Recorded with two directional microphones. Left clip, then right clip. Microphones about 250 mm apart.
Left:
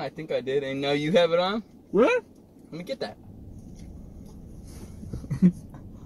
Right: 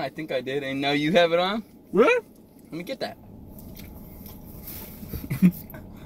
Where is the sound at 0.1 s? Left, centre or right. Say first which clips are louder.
Left 1 dB; centre.